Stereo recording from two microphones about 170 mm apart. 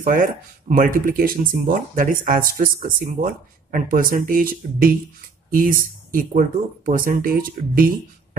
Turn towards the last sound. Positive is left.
turn(degrees=-55)  # may be behind; listen again after turning